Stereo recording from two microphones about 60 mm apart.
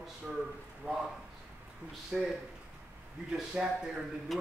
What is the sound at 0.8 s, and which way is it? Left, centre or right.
Speech, centre.